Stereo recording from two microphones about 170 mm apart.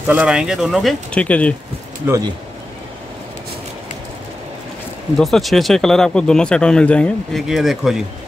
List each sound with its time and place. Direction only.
0.0 s speech: 10° right (ahead or behind)
2.0 s speech: 10° right (ahead or behind)
5.2 s speech: centre (ahead or behind)